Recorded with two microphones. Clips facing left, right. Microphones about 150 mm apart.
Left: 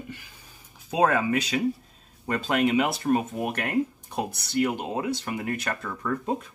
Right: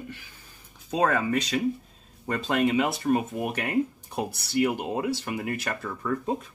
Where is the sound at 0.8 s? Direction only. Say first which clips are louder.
Left 2 dB; 5° left (ahead or behind).